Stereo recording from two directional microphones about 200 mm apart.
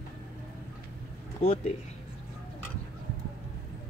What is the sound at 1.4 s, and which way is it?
Speech, 30° left (ahead or behind).